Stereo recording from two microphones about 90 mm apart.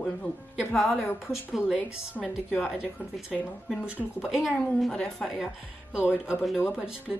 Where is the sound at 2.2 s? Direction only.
20° left (ahead or behind).